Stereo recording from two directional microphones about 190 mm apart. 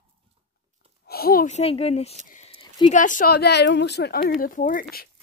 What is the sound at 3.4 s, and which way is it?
Speech, 60° left (ahead or behind).